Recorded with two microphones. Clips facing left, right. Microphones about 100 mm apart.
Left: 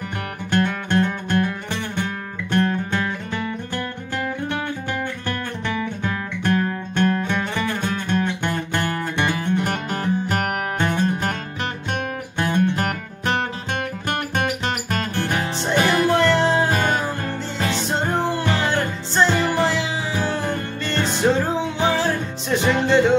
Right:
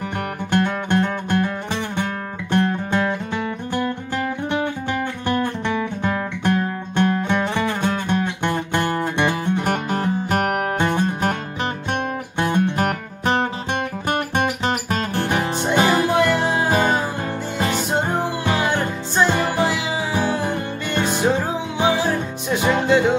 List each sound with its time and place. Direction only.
0.8 s music: 15° right (ahead or behind)
5.2 s music: 20° right (ahead or behind)
9.8 s music: 5° right (ahead or behind)
10.8 s music: 15° right (ahead or behind)
12.4 s music: 20° right (ahead or behind)
16.7 s music: 20° right (ahead or behind)
17.6 s music: 10° right (ahead or behind)